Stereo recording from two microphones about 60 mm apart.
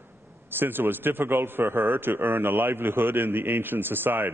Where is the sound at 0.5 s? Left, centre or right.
Right.